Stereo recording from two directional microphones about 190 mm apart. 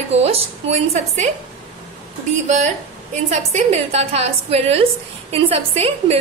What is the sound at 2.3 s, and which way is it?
A woman's voice, 40° right (ahead or behind).